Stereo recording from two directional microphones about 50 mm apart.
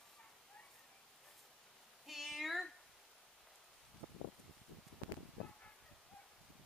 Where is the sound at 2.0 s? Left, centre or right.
Centre.